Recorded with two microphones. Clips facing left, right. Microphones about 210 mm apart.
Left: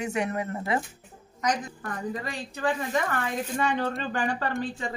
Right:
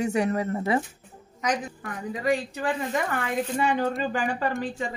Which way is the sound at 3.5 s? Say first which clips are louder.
Right 2 dB; 10° right (ahead or behind).